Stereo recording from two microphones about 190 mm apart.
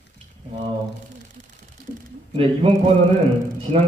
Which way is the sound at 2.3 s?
30° right (ahead or behind).